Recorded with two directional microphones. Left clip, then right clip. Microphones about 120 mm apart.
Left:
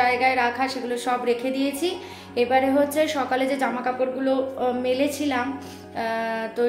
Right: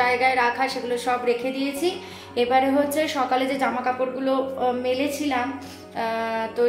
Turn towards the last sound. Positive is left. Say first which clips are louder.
# right 1 dB
turn(degrees=10)  # may be behind; listen again after turning